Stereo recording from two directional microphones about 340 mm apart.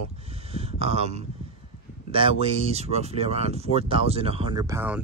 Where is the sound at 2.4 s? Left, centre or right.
Centre.